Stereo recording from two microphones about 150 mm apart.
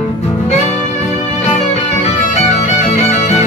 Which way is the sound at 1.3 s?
50° left (ahead or behind).